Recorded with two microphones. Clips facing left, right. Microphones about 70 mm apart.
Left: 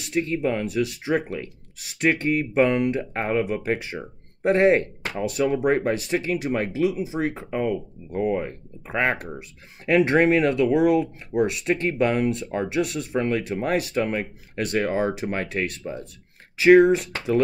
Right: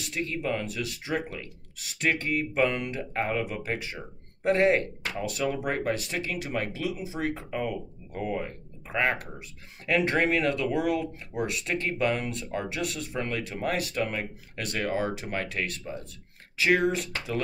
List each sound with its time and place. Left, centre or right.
0.1 s speech: left